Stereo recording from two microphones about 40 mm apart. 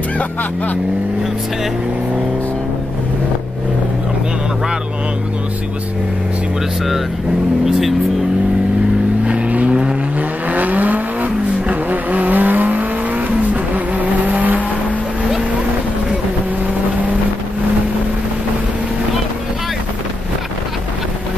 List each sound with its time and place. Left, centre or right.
9.2 s vehicle: right
9.7 s vehicle: right
10.5 s vehicle: right